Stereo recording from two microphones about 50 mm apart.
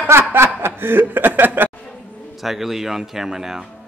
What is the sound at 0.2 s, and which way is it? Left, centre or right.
Snicker, right.